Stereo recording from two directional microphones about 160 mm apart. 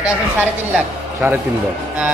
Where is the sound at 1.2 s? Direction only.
15° right (ahead or behind).